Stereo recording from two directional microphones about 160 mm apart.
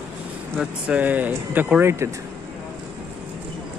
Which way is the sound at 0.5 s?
5° right (ahead or behind).